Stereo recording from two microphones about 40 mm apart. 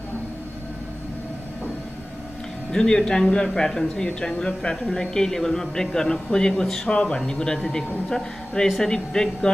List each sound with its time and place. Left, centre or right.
2.7 s speech: centre
4.8 s speech: centre